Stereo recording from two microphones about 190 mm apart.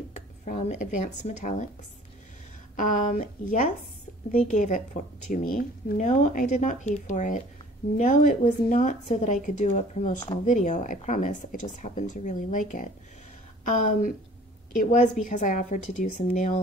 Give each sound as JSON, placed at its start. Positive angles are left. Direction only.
{"t": 0.5, "sound": "a woman's voice", "side_deg": 40}
{"t": 2.7, "sound": "a woman's voice", "side_deg": 40}